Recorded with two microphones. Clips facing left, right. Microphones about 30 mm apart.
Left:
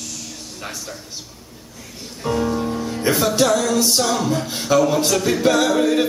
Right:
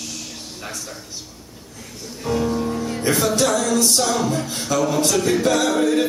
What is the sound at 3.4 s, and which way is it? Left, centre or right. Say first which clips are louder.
A capella: left 1 dB; centre.